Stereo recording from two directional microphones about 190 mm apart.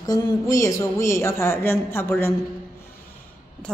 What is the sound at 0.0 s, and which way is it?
A woman's voice, 20° left (ahead or behind).